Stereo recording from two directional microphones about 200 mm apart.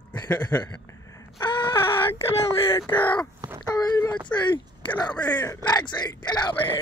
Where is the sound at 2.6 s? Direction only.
10° left (ahead or behind).